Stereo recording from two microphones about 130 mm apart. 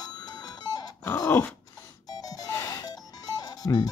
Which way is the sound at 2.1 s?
30° left (ahead or behind).